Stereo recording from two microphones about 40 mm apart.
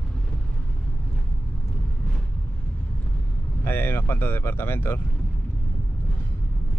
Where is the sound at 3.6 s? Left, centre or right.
Left.